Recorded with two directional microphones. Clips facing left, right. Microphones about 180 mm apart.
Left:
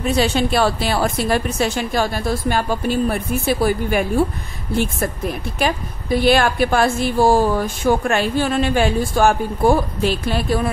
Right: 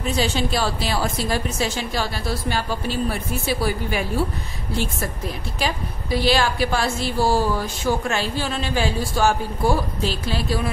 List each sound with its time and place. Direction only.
0.0 s a woman's voice: 60° left (ahead or behind)